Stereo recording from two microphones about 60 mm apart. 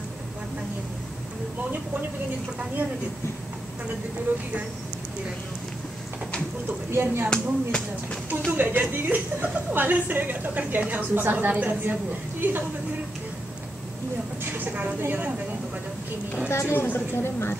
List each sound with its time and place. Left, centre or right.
4.3 s speech: right
6.9 s speech: right
7.2 s speech: centre
8.5 s a woman's voice: right
14.6 s a woman's voice: right
16.4 s a woman's voice: left